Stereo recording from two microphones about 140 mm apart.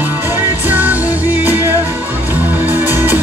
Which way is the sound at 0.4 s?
10° right (ahead or behind).